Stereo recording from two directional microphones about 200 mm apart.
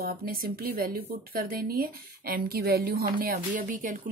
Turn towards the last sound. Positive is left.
turn(degrees=-40)  # may be behind; listen again after turning